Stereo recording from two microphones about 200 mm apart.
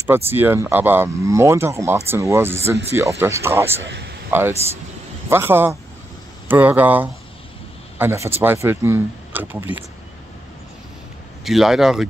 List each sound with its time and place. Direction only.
0.0 s speech: 10° right (ahead or behind)
3.8 s a man's voice: 60° right (ahead or behind)
4.3 s speech: 10° right (ahead or behind)
11.4 s speech: centre (ahead or behind)